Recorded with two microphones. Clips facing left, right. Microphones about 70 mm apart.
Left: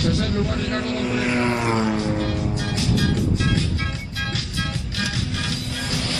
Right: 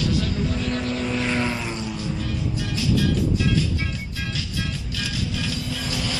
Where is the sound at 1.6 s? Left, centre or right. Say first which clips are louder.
Left 8 dB; left.